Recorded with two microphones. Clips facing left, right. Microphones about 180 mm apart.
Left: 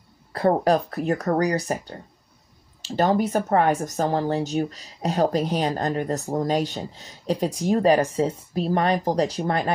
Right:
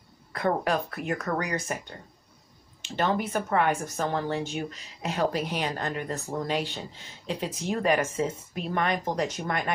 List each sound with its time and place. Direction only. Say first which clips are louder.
0.3 s speech: left 7 dB; 35° left (ahead or behind)